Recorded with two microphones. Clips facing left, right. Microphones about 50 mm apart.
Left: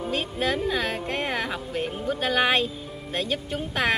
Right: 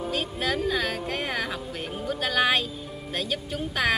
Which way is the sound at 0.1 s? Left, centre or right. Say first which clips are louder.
Left 3 dB; left.